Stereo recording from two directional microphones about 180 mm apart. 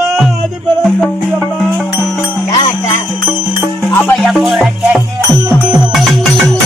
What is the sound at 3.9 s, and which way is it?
Music, 10° left (ahead or behind).